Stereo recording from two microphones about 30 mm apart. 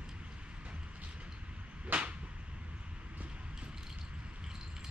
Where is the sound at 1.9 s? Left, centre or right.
Right.